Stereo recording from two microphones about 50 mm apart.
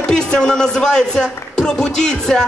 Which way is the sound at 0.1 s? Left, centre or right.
Centre.